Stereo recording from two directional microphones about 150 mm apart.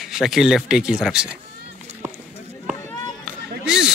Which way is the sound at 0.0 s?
Centre (ahead or behind).